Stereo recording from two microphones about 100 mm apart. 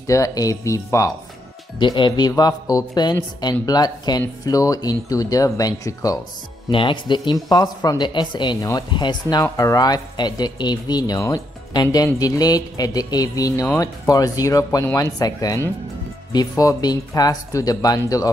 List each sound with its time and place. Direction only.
0.0 s speech: 35° left (ahead or behind)
1.8 s speech: 50° left (ahead or behind); by 6.1 s 35° left (ahead or behind)
6.7 s speech: 60° left (ahead or behind)
7.4 s speech: 40° left (ahead or behind)
8.5 s speech: 35° left (ahead or behind)
8.9 s speech: 50° left (ahead or behind)
9.4 s speech: 35° left (ahead or behind)